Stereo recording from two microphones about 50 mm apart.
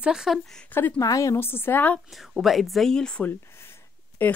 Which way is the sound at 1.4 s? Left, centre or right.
Left.